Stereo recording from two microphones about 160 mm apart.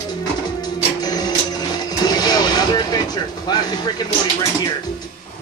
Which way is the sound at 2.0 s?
25° left (ahead or behind).